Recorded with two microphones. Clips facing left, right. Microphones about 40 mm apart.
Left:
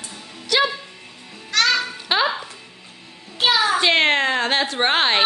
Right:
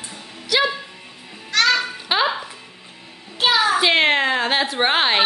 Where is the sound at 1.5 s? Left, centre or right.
Centre.